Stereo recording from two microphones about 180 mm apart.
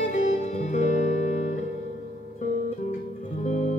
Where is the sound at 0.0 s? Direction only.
40° left (ahead or behind).